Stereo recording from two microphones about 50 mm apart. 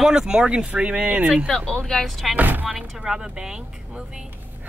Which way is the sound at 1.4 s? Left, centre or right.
Centre.